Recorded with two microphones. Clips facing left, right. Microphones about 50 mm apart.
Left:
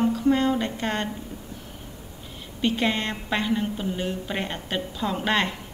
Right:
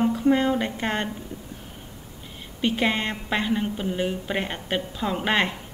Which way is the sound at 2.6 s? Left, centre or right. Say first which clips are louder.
Right 1 dB; centre.